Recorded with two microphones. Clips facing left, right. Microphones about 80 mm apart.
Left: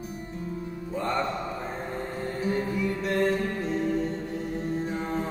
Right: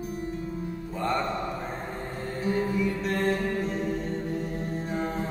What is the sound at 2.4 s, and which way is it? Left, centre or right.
Music, centre.